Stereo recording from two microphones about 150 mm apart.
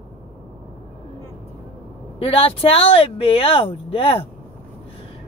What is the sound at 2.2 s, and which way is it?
Speech, 40° left (ahead or behind).